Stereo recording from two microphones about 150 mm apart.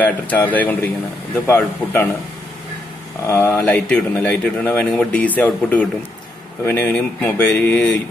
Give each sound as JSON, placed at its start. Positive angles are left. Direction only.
{"t": 0.0, "sound": "speech", "side_deg": 10}
{"t": 3.3, "sound": "speech", "side_deg": 20}